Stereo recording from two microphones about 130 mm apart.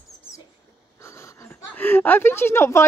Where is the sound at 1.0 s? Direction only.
25° left (ahead or behind).